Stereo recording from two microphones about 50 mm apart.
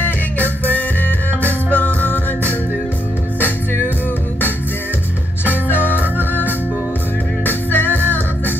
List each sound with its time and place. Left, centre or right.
0.0 s music: left
5.7 s music: left